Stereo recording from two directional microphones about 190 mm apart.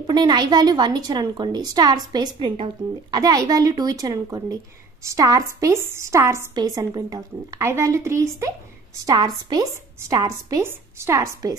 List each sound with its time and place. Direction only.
0.0 s a woman's voice: 20° right (ahead or behind)